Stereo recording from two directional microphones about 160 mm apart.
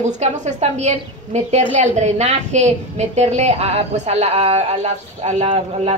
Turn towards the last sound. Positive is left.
turn(degrees=-40)  # may be behind; listen again after turning